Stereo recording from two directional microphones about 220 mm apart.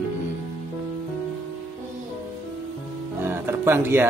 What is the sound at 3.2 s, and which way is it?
Music, 10° right (ahead or behind).